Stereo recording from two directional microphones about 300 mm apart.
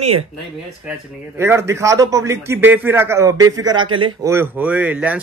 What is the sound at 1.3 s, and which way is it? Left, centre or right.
A man's voice, centre.